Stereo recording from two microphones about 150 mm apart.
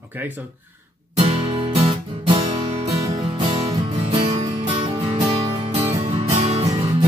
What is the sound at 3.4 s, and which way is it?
Music, 35° right (ahead or behind).